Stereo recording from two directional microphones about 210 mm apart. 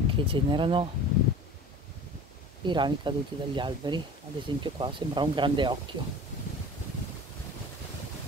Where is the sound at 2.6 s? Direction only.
20° right (ahead or behind).